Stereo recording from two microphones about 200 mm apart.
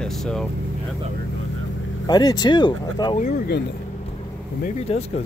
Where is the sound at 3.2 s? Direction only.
45° left (ahead or behind).